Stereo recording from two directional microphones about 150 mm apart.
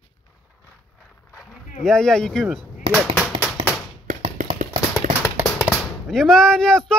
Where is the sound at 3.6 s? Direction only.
30° right (ahead or behind).